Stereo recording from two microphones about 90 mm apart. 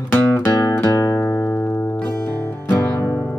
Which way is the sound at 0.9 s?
35° left (ahead or behind).